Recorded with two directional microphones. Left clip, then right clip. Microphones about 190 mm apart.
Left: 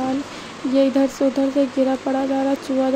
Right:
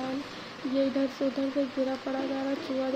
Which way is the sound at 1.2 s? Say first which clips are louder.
Left 11 dB; 45° left (ahead or behind).